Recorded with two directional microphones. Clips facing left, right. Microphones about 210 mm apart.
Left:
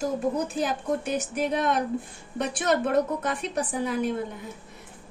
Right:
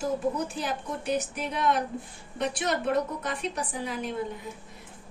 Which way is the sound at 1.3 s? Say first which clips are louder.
Left 3 dB; 50° left (ahead or behind).